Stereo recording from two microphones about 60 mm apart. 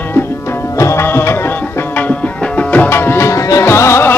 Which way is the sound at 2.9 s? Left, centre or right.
Left.